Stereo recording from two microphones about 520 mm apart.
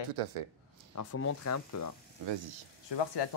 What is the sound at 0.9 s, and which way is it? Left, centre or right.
Speech, left.